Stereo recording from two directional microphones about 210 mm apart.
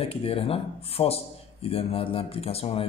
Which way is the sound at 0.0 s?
25° left (ahead or behind).